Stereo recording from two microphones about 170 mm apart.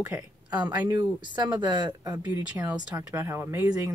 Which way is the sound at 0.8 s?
25° right (ahead or behind).